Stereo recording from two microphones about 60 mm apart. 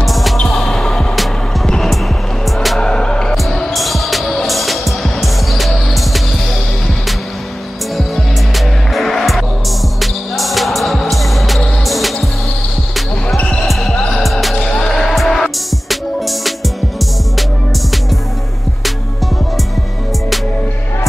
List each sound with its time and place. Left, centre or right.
0.0 s music: centre
3.4 s music: centre
8.5 s music: centre
13.4 s basketball bounce: centre
13.7 s basketball bounce: centre
14.2 s music: centre
14.6 s music: centre